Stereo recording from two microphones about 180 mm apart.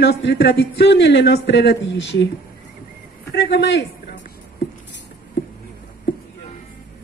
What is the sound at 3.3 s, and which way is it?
Speech, 75° left (ahead or behind).